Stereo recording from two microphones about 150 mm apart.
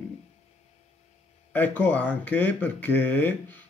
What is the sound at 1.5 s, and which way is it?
A man's voice, 10° left (ahead or behind).